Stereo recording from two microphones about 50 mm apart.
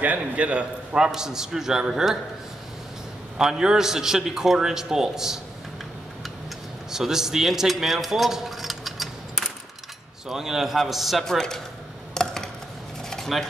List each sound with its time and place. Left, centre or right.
0.0 s a man's voice: right
0.9 s a man's voice: centre
3.3 s a man's voice: centre
6.9 s a man's voice: centre
11.2 s speech: centre
12.1 s a sound: centre
13.3 s a man's voice: centre